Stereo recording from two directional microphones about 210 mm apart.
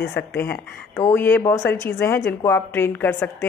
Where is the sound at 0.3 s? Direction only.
10° left (ahead or behind).